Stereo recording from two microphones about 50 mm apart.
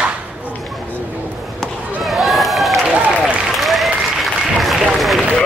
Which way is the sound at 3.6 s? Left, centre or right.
Centre.